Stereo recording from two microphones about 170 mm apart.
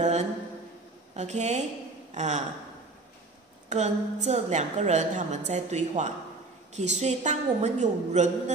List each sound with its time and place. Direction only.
0.0 s a sound: 40° right (ahead or behind)
1.1 s a woman's voice: 40° right (ahead or behind)
3.6 s a woman's voice: 45° right (ahead or behind)